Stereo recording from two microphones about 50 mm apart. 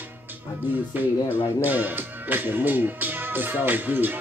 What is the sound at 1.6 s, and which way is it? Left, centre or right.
Speech, right.